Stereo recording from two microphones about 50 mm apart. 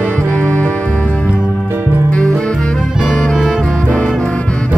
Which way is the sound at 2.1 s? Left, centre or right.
Left.